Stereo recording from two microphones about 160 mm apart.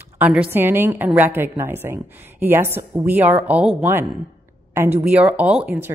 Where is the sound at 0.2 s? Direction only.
10° right (ahead or behind).